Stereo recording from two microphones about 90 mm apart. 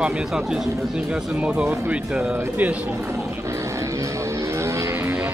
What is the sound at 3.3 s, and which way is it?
Music, 30° right (ahead or behind).